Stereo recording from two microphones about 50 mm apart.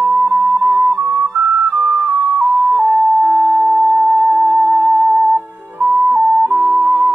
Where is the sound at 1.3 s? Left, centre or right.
Right.